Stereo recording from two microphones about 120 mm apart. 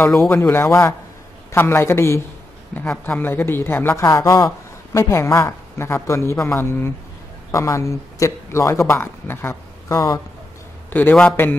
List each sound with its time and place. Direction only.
0.1 s speech: 5° left (ahead or behind)
0.4 s a man's voice: 20° left (ahead or behind)
10.9 s a man's voice: 15° left (ahead or behind)